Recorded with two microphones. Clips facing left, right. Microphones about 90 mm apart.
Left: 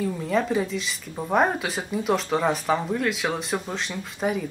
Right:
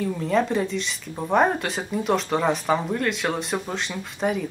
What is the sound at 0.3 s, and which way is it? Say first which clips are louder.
Speech: right 2 dB; centre (ahead or behind).